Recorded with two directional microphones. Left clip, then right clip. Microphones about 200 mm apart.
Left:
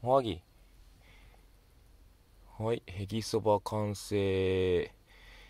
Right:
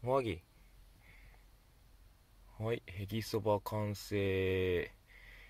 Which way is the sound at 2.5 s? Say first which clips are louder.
Left 5 dB; 20° left (ahead or behind).